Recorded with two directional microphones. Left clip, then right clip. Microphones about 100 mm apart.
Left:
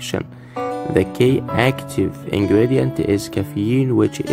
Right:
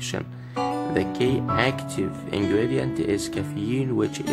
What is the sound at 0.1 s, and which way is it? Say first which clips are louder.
Speech: left 11 dB; 45° left (ahead or behind).